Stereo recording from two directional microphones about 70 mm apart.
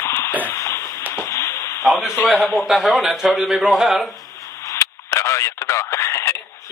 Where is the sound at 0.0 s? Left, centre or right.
Left.